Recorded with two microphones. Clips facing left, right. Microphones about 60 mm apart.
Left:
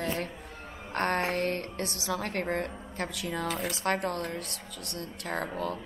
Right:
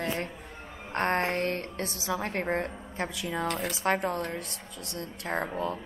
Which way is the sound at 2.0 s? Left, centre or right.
Right.